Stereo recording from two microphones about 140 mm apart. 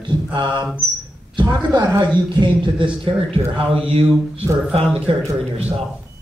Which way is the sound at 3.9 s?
45° right (ahead or behind).